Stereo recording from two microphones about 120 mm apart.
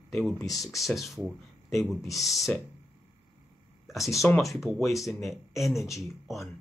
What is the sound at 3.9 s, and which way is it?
Speech, centre (ahead or behind).